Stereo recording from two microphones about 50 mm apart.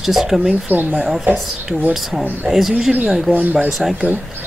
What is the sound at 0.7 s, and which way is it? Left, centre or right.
Speech, right.